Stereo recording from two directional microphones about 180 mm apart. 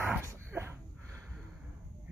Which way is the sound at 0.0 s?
10° right (ahead or behind).